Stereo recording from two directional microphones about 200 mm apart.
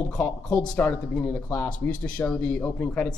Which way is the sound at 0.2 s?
5° left (ahead or behind).